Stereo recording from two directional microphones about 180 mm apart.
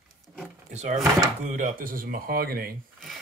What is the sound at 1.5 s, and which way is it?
Speech, 45° right (ahead or behind).